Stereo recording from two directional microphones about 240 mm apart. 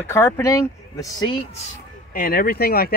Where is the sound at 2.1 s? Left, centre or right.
Left.